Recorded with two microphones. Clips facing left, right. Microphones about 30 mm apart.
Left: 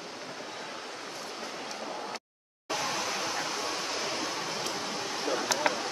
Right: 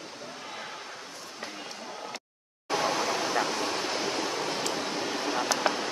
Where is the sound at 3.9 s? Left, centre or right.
Right.